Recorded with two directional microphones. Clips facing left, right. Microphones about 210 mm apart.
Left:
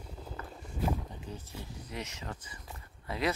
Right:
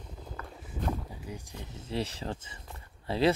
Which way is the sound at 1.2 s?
15° right (ahead or behind).